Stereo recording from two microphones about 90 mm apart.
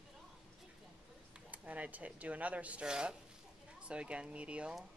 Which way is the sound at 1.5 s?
15° right (ahead or behind).